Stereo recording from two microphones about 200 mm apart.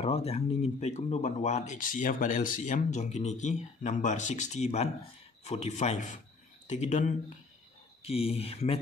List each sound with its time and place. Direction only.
0.0 s speech: 30° left (ahead or behind)